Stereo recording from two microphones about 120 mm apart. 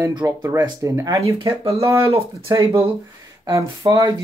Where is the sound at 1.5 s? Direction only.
55° right (ahead or behind).